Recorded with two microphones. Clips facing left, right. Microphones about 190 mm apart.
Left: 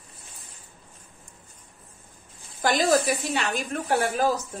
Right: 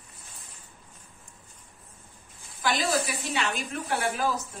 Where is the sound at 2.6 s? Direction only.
40° left (ahead or behind).